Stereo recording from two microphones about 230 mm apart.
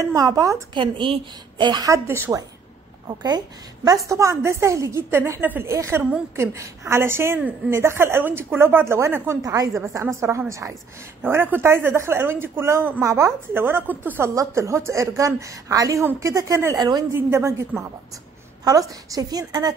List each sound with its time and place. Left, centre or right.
0.0 s a woman's voice: centre